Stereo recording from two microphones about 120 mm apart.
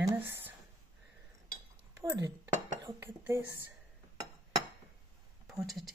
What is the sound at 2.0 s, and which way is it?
Speech, 30° right (ahead or behind).